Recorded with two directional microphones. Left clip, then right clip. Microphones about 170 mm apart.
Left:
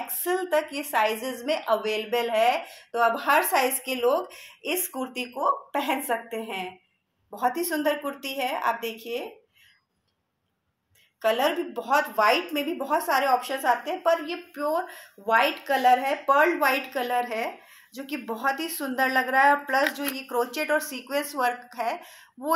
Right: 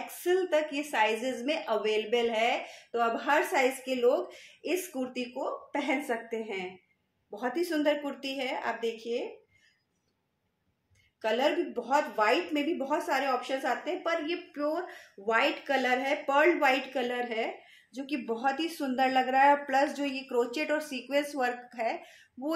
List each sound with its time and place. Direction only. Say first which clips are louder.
0.0 s a woman's voice: left 1 dB; 35° right (ahead or behind)
11.1 s a woman's voice: left 4 dB; 30° right (ahead or behind)